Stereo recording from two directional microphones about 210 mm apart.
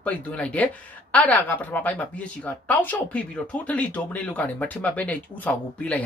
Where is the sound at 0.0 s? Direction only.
5° left (ahead or behind).